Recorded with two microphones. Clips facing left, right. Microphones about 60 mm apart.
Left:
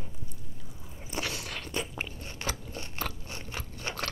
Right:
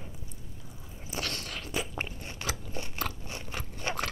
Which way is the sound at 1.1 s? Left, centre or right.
Centre.